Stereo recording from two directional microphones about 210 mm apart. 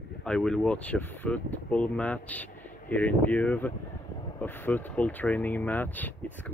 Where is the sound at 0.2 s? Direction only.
5° left (ahead or behind).